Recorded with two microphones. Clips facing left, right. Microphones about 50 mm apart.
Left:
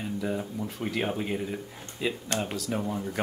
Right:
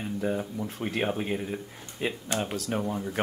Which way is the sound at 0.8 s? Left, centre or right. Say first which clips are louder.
Right 1 dB; right.